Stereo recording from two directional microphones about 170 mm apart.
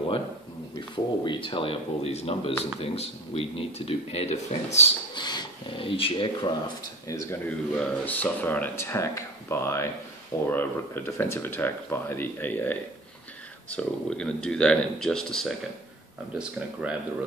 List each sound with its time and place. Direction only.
0.7 s speech: 25° left (ahead or behind)
5.1 s speech: 25° left (ahead or behind)
7.1 s speech: 20° left (ahead or behind)
7.4 s speech: 5° left (ahead or behind)